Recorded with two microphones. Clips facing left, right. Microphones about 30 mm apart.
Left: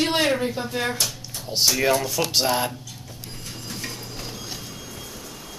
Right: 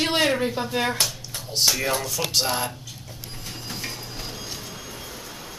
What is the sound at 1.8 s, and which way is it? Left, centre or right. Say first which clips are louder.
Speech: left 4 dB; centre.